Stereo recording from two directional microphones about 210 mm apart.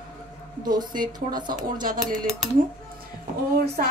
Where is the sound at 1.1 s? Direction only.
40° right (ahead or behind).